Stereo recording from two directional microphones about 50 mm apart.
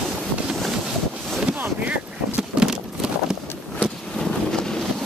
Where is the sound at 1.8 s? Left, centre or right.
Right.